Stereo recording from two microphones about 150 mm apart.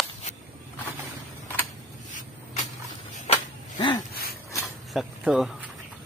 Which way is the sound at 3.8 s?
30° left (ahead or behind).